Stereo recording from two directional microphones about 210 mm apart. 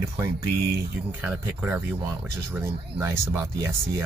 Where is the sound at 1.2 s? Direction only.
10° right (ahead or behind).